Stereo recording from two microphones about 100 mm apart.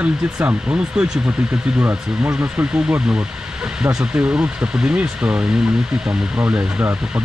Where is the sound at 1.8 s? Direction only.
20° right (ahead or behind).